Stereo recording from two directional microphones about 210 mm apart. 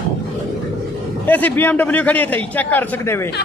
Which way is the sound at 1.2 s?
10° left (ahead or behind).